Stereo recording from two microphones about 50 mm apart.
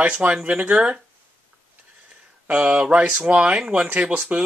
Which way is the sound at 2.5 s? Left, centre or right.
Right.